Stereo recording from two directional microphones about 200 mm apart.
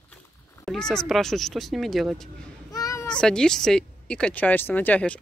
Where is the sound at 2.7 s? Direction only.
15° left (ahead or behind).